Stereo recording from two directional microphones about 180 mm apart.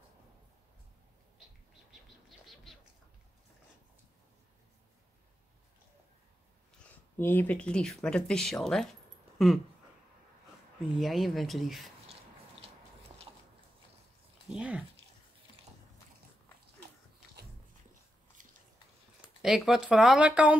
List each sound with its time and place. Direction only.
2.4 s a sound: centre (ahead or behind)
7.2 s speech: 10° left (ahead or behind)
11.0 s speech: centre (ahead or behind)
14.5 s a sound: 5° right (ahead or behind)
18.4 s biting: 45° right (ahead or behind)
19.4 s speech: centre (ahead or behind)